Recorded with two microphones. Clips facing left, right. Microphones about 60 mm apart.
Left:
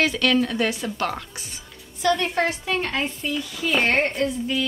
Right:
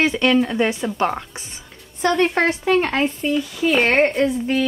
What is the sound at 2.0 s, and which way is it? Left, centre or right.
Speech, right.